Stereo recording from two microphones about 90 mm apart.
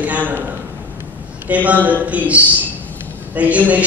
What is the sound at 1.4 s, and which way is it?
A woman's voice, 15° right (ahead or behind).